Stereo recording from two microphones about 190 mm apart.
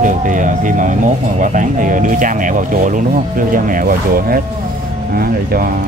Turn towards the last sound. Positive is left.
turn(degrees=-50)  # may be behind; listen again after turning